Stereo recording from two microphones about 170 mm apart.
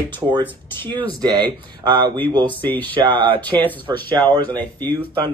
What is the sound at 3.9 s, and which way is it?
Speech, 25° right (ahead or behind).